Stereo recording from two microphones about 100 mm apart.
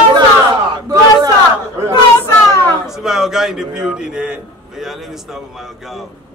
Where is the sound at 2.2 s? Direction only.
25° left (ahead or behind).